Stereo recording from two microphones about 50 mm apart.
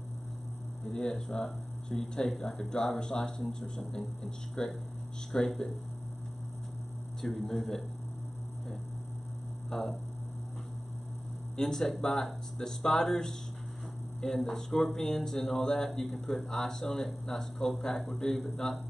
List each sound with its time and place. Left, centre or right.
0.8 s speech: centre
7.2 s speech: centre
9.7 s speech: centre
11.5 s speech: centre
18.0 s a man's voice: left
18.6 s speech: centre